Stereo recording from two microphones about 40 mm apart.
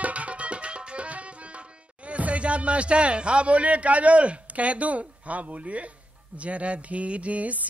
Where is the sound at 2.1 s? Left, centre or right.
Right.